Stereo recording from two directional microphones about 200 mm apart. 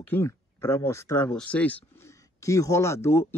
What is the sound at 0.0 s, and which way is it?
Speech, 10° left (ahead or behind).